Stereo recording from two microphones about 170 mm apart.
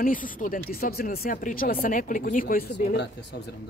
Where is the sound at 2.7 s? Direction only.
90° left.